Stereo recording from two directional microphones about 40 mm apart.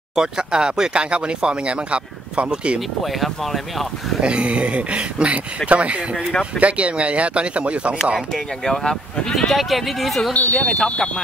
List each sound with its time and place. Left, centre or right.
0.1 s speech: centre
4.2 s speech: right
8.6 s speech: centre
9.5 s speech: centre
10.5 s speech: left